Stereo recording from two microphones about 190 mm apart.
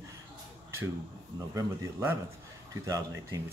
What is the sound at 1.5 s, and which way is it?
Speech, 15° right (ahead or behind).